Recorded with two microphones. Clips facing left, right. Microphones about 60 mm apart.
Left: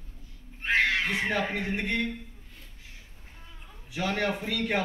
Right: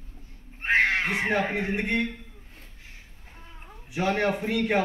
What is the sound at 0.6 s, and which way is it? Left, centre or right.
Speech, right.